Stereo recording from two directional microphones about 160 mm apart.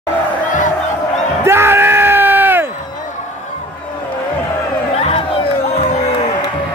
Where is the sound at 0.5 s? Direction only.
50° left (ahead or behind).